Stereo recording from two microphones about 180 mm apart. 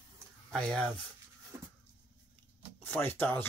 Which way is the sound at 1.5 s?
15° right (ahead or behind).